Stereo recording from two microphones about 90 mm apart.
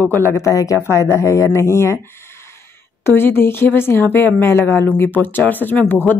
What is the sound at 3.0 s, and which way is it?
Speech, 25° left (ahead or behind).